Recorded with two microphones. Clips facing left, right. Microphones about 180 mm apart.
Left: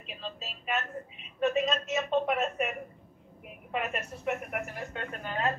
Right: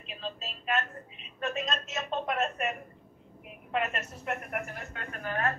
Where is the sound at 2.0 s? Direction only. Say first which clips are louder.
Left 3 dB; 10° left (ahead or behind).